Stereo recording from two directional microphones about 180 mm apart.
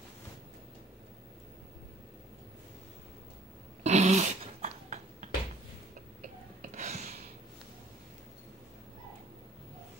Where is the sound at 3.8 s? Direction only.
40° right (ahead or behind).